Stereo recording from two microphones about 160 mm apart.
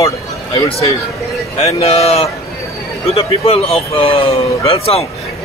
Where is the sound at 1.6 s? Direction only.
40° left (ahead or behind).